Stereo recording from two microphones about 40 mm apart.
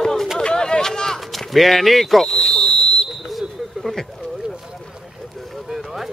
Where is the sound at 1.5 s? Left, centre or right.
Centre.